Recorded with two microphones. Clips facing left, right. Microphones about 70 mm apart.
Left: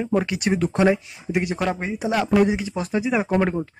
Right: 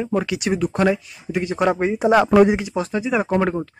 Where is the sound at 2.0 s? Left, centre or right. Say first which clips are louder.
Right 5 dB; right.